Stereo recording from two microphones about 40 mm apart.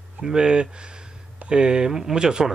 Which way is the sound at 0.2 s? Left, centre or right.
Centre.